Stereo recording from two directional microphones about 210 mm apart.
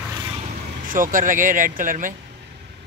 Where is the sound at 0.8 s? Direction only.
40° right (ahead or behind).